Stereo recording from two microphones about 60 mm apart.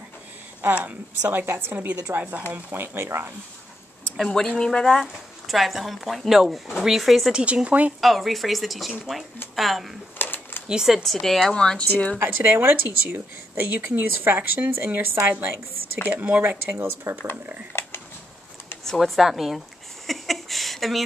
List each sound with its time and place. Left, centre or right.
0.7 s a woman's voice: right
1.4 s speech: right
4.2 s speech: centre
5.0 s a woman's voice: centre
7.4 s a woman's voice: right
8.0 s a woman's voice: centre
10.1 s a sound: left
10.7 s speech: centre
11.0 s a woman's voice: centre
12.2 s speech: right
16.1 s speech: right
17.7 s a sound: left
18.9 s a woman's voice: centre
20.1 s a sound: centre